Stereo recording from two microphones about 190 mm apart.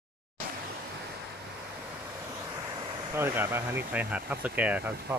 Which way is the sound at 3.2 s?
10° right (ahead or behind).